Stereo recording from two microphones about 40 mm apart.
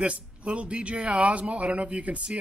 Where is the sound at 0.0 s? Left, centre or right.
Right.